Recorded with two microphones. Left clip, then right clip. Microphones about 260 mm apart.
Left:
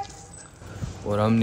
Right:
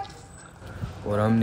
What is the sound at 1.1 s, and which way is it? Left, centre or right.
Speech, centre.